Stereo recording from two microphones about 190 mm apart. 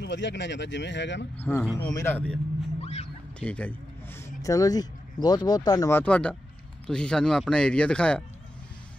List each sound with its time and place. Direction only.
0.0 s speech: 65° left (ahead or behind)
1.4 s speech: 10° left (ahead or behind)
2.8 s a sound: 35° left (ahead or behind)
3.3 s speech: 5° left (ahead or behind)
4.4 s speech: 20° left (ahead or behind)